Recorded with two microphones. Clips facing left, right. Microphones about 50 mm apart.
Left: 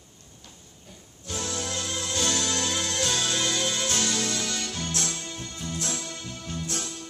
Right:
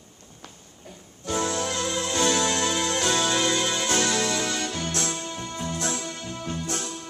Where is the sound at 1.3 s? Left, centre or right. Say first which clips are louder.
Right 6 dB; right.